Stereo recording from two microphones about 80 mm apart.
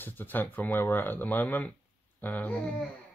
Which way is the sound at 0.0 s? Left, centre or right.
Left.